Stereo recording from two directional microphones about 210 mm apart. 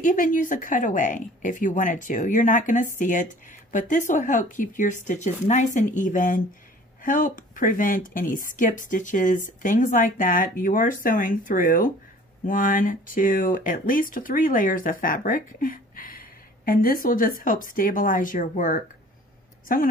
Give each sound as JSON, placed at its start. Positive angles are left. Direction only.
{"t": 0.0, "sound": "speech", "side_deg": 40}